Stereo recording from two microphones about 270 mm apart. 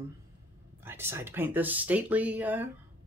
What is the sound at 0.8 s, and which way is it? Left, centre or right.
Speech, centre.